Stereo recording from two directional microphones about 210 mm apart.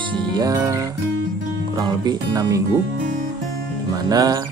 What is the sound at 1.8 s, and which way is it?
Speech, 20° right (ahead or behind).